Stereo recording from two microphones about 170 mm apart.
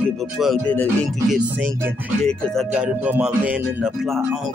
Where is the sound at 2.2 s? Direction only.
5° left (ahead or behind).